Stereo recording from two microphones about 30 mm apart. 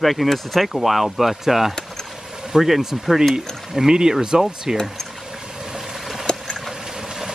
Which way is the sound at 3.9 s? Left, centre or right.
Right.